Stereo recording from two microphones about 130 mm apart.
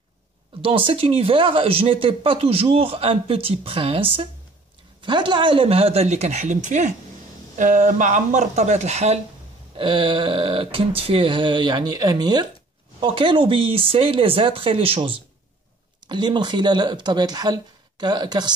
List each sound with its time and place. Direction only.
0.6 s speech: 45° right (ahead or behind); by 6.9 s 70° right (ahead or behind)
7.5 s speech: 80° right; by 9.2 s 60° right (ahead or behind)
9.8 s speech: 40° right (ahead or behind)
16.1 s speech: 35° right (ahead or behind)